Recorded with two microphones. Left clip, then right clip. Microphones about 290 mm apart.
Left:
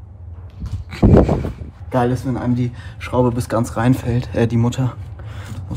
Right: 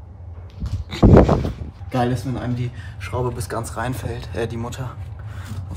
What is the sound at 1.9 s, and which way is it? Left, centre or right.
A man's voice, centre.